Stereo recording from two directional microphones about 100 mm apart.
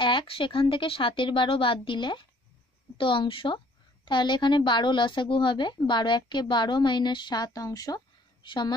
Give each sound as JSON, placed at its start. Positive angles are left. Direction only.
{"t": 0.0, "sound": "a woman's voice", "side_deg": 55}